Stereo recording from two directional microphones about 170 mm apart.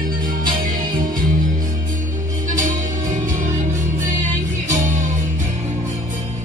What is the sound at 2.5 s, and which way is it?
Music, 50° right (ahead or behind).